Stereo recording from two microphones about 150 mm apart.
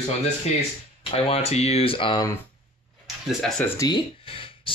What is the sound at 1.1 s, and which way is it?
Speech, 40° left (ahead or behind).